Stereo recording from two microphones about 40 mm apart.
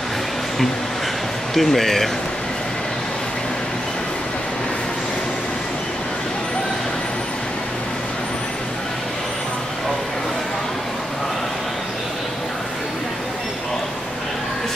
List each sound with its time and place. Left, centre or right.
1.5 s a man's voice: centre